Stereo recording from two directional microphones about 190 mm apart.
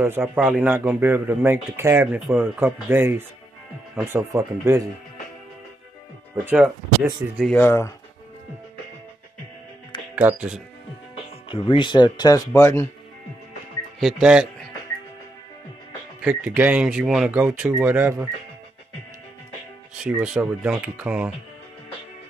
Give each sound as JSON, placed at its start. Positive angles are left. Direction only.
{"t": 0.0, "sound": "a man's voice", "side_deg": -10}
{"t": 6.3, "sound": "a man's voice", "side_deg": -10}
{"t": 7.5, "sound": "speech", "side_deg": 10}
{"t": 10.1, "sound": "a man's voice", "side_deg": -10}
{"t": 11.4, "sound": "speech", "side_deg": 25}
{"t": 13.9, "sound": "speech", "side_deg": -5}
{"t": 16.2, "sound": "a man's voice", "side_deg": -5}
{"t": 20.0, "sound": "speech", "side_deg": -5}